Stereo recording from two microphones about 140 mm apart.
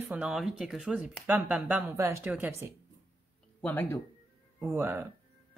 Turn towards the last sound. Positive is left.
turn(degrees=-15)  # may be behind; listen again after turning